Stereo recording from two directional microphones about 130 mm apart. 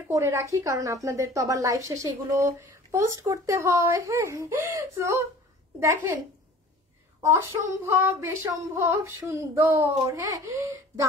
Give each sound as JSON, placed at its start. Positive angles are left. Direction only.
{"t": 0.1, "sound": "a woman's voice", "side_deg": -25}
{"t": 7.2, "sound": "a woman's voice", "side_deg": -20}